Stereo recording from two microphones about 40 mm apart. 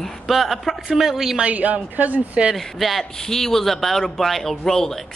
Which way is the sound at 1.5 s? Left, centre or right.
Right.